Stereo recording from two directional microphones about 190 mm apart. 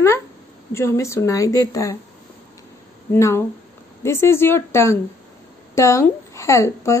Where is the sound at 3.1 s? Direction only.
15° left (ahead or behind).